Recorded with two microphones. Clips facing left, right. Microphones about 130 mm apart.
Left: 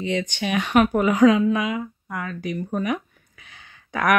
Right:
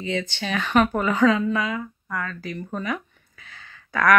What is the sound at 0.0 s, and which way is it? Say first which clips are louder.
Speech: left 3 dB; 15° left (ahead or behind).